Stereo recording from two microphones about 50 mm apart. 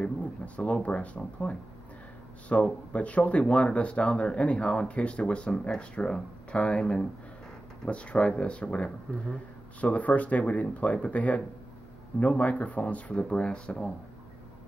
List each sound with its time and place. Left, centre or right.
0.6 s speech: left